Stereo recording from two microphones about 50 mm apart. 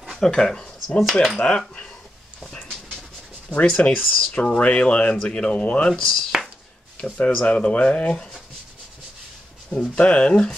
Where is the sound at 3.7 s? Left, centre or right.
Left.